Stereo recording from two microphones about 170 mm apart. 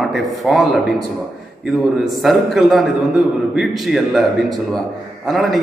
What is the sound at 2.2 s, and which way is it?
A man's voice, centre (ahead or behind).